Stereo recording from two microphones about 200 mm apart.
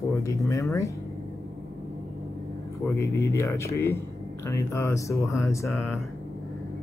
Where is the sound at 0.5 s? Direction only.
15° left (ahead or behind).